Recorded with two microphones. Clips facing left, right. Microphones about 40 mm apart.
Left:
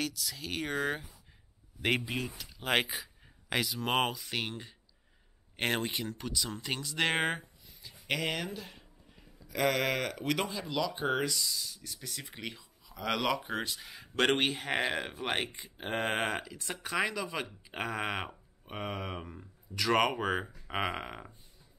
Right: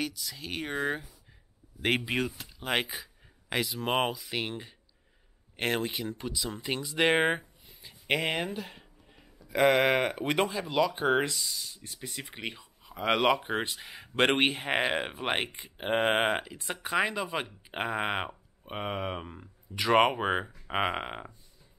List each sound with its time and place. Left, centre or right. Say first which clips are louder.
0.0 s speech: right 1 dB; centre
1.8 s speech: right 3 dB; right
2.6 s speech: even; centre
5.6 s speech: right 2 dB; centre
7.6 s a sound: right 4 dB; right
9.5 s speech: right 6 dB; right
11.4 s speech: even; right